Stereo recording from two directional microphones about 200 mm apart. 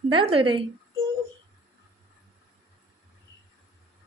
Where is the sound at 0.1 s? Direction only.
25° right (ahead or behind).